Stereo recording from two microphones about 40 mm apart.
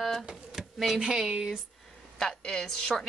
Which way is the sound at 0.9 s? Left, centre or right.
Centre.